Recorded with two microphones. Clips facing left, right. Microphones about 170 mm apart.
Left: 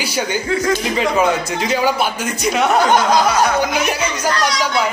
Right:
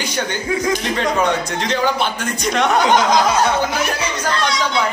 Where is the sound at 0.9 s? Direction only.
5° left (ahead or behind).